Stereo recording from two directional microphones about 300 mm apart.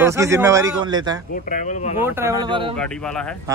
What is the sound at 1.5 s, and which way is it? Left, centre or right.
Speech, left.